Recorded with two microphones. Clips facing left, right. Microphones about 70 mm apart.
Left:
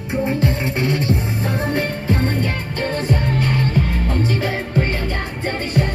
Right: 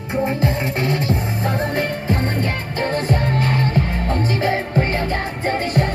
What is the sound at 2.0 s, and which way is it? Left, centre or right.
Music, right.